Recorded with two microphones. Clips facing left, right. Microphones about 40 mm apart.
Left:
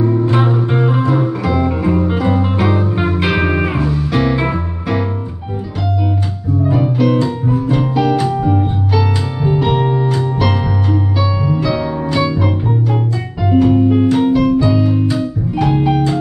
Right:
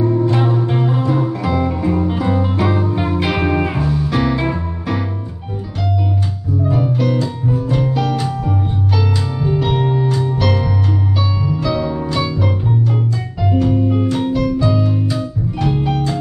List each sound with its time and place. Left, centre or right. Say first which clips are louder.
0.0 s music: left 1 dB; centre
1.7 s music: left 2 dB; centre
4.1 s music: left 3 dB; centre
6.6 s music: left 3 dB; centre
7.2 s music: left 3 dB; left
7.5 s music: left 2 dB; centre
13.7 s music: left 5 dB; left